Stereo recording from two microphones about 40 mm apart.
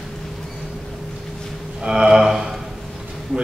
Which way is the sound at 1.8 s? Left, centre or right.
Centre.